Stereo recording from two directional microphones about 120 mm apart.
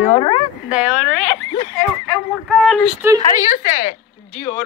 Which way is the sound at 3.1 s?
90° left.